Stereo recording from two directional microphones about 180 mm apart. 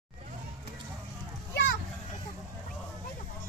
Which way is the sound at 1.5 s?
75° left (ahead or behind).